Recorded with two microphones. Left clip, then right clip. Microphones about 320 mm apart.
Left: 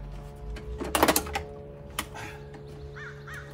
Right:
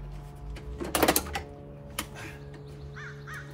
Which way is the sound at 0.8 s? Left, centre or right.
Centre.